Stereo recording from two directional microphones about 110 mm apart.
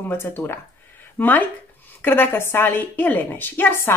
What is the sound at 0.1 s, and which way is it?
A woman's voice, 20° left (ahead or behind).